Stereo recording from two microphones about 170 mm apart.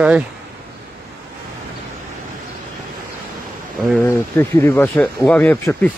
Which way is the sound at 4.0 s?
15° left (ahead or behind).